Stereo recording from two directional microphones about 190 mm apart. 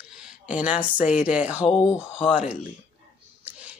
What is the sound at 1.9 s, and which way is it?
Speech, 20° left (ahead or behind).